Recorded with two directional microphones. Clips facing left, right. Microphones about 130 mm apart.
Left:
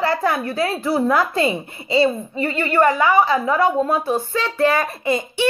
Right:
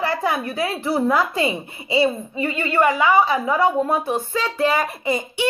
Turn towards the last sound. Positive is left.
turn(degrees=-15)  # may be behind; listen again after turning